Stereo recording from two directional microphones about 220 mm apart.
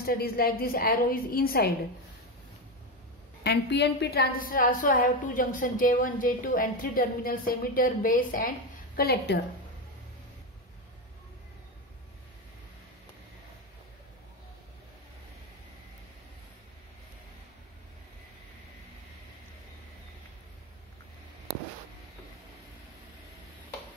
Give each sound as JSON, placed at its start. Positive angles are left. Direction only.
{"t": 0.0, "sound": "a woman's voice", "side_deg": 45}
{"t": 3.4, "sound": "a woman's voice", "side_deg": 50}